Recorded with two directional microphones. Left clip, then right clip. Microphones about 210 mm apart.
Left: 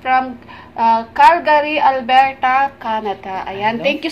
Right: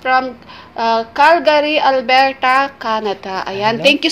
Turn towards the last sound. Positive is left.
turn(degrees=-40)  # may be behind; listen again after turning